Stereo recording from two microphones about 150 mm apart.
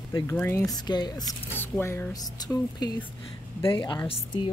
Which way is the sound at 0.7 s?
25° left (ahead or behind).